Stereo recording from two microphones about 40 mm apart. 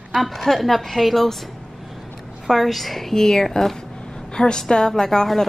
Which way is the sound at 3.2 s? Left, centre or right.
Centre.